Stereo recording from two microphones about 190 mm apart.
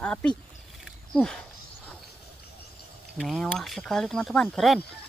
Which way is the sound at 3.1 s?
Centre (ahead or behind).